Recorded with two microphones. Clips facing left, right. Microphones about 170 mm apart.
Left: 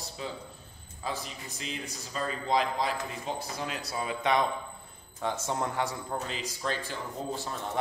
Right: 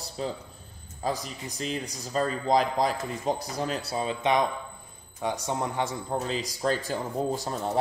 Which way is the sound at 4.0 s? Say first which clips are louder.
Right 2 dB; 20° right (ahead or behind).